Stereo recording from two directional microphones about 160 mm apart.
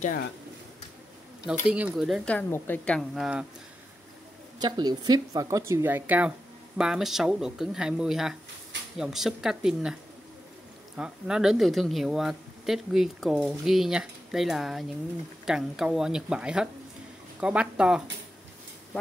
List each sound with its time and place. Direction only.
1.4 s speech: 5° right (ahead or behind)
2.2 s a woman's voice: 10° left (ahead or behind)
4.6 s speech: 25° right (ahead or behind); by 9.9 s 5° right (ahead or behind)
11.0 s speech: 5° right (ahead or behind)